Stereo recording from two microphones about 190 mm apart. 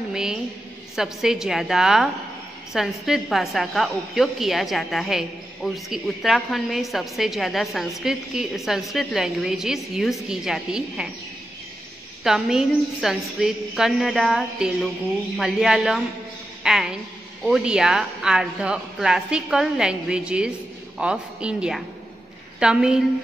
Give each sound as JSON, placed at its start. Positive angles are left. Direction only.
{"t": 0.1, "sound": "a woman's voice", "side_deg": -5}
{"t": 12.2, "sound": "a woman's voice", "side_deg": 0}